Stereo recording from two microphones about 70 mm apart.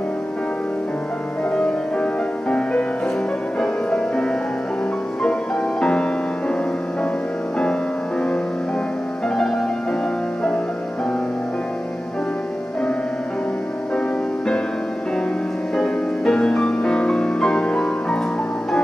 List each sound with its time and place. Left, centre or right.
1.5 s music: centre
3.5 s music: centre
15.7 s music: centre